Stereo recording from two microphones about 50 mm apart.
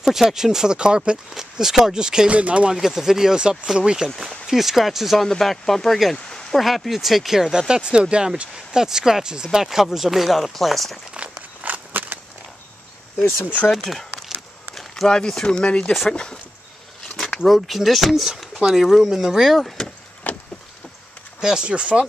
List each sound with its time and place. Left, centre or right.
0.0 s speech: centre
1.3 s speech: centre
2.3 s speech: right
2.7 s speech: centre
6.1 s speech: centre
6.6 s speech: centre
11.2 s walk: right
11.6 s walk: right
13.8 s a sound: centre
16.1 s speech: centre
17.5 s speech: centre
20.2 s vehicle: left
21.4 s speech: centre